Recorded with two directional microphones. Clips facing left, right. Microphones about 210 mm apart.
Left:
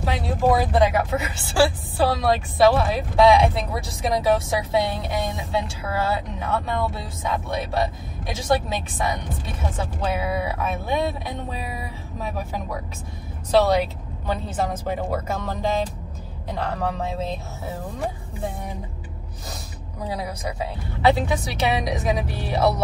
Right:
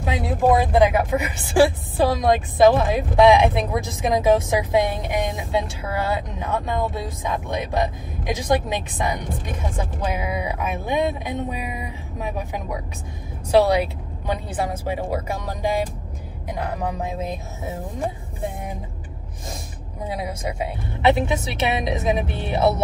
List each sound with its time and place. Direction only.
0.7 s a woman's voice: 15° right (ahead or behind)
20.1 s a woman's voice: 20° right (ahead or behind)